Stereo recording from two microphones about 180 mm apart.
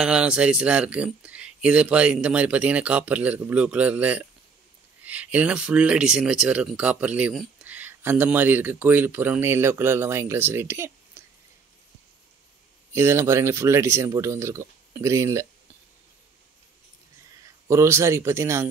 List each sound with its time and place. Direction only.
0.0 s speech: 5° right (ahead or behind)
12.9 s speech: 15° right (ahead or behind)
17.6 s speech: 15° right (ahead or behind)